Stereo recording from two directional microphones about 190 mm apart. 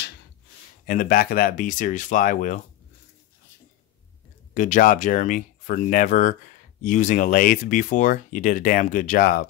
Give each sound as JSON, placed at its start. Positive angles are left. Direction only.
{"t": 0.8, "sound": "speech", "side_deg": 45}
{"t": 4.6, "sound": "speech", "side_deg": 45}